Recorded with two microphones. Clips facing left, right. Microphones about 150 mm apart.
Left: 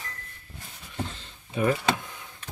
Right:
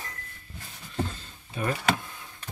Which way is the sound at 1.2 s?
15° left (ahead or behind).